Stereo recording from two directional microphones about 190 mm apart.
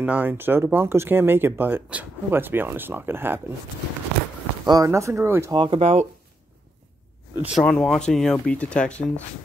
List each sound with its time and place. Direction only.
0.0 s speech: 10° right (ahead or behind)
4.6 s speech: 15° right (ahead or behind)
5.6 s speech: 30° right (ahead or behind)
7.4 s speech: centre (ahead or behind)